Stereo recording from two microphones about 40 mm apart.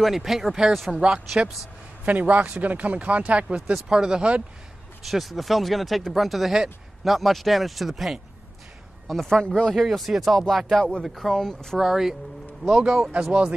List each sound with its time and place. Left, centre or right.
0.0 s speech: centre
0.9 s speech: centre
2.0 s speech: right
3.7 s speech: centre
5.0 s speech: centre
9.7 s speech: centre
11.8 s speech: centre
13.2 s speech: right